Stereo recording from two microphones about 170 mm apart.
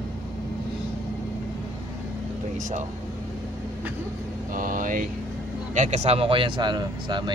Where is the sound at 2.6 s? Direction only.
45° right (ahead or behind).